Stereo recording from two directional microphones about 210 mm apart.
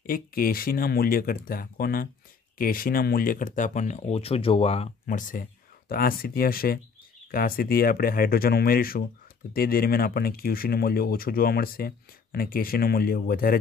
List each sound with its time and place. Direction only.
0.0 s speech: 45° left (ahead or behind)
5.0 s speech: 40° left (ahead or behind)